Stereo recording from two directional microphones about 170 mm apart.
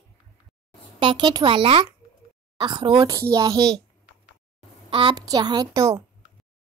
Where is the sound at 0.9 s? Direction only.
30° right (ahead or behind).